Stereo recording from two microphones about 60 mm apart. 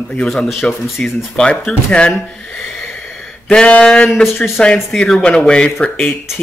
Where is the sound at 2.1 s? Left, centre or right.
Centre.